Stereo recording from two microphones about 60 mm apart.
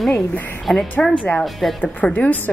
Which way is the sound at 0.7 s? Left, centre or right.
Centre.